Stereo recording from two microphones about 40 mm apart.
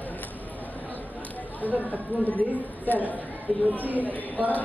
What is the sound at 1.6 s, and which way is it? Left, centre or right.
A man's voice, left.